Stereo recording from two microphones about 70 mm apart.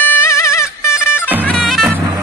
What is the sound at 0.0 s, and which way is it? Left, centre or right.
Music, left.